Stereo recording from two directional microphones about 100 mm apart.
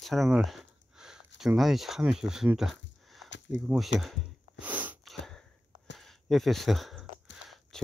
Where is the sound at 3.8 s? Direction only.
Centre (ahead or behind).